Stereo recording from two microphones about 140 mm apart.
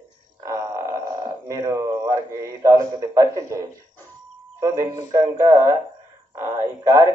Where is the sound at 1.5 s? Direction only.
25° right (ahead or behind).